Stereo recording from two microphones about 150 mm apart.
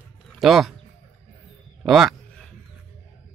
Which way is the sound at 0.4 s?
Centre (ahead or behind).